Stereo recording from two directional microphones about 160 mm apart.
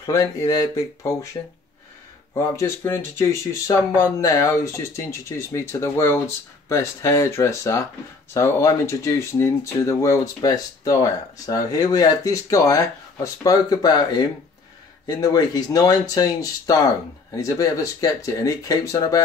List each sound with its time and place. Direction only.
0.0 s speech: 20° left (ahead or behind)
2.3 s speech: 20° left (ahead or behind)